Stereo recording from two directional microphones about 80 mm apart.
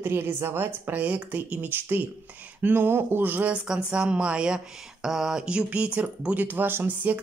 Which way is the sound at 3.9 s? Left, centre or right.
Centre.